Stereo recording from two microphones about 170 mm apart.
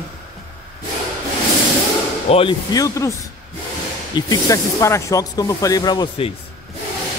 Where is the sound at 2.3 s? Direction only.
35° left (ahead or behind).